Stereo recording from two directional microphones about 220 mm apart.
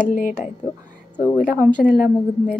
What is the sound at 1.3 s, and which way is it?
A woman's voice, 35° left (ahead or behind).